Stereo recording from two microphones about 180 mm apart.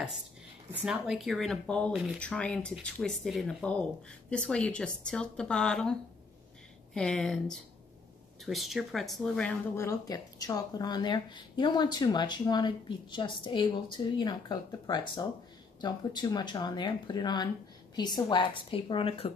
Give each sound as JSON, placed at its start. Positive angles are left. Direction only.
{"t": 0.8, "sound": "speech", "side_deg": -5}
{"t": 8.5, "sound": "speech", "side_deg": 0}
{"t": 9.8, "sound": "speech", "side_deg": 20}